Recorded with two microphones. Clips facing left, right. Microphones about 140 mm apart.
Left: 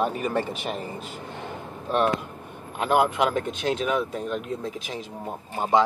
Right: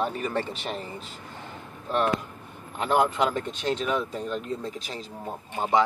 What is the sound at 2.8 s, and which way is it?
Speech, 10° left (ahead or behind).